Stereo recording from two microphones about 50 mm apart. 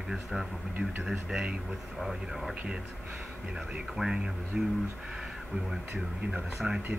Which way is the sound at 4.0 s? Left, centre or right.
Centre.